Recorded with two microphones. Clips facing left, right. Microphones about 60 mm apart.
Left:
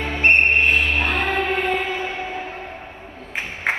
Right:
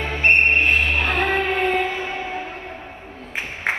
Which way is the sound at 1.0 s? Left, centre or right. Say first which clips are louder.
Right 1 dB; right.